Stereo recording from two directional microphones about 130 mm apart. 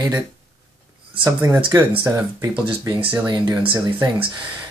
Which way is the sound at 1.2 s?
15° right (ahead or behind).